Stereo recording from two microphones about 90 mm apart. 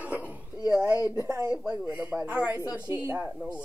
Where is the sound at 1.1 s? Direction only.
40° right (ahead or behind).